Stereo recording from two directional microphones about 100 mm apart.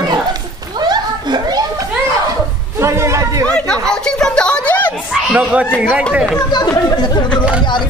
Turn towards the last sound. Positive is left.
turn(degrees=45)  # may be behind; listen again after turning